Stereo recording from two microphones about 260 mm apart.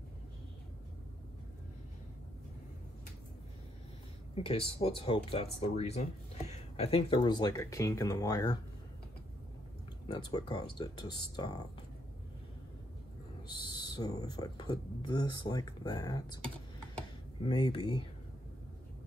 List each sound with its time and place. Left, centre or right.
4.4 s speech: left
10.1 s speech: centre
13.5 s speech: centre
17.4 s speech: centre